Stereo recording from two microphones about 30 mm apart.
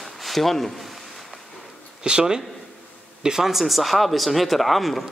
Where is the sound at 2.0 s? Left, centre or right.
Right.